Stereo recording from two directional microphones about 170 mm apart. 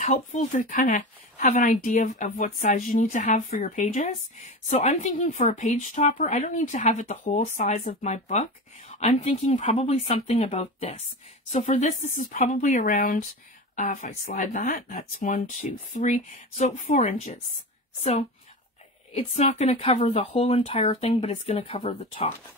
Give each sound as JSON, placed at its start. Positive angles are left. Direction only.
{"t": 0.0, "sound": "speech", "side_deg": 45}
{"t": 19.1, "sound": "speech", "side_deg": 40}